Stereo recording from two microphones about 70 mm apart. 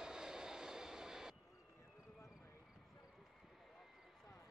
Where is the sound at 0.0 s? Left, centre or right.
Centre.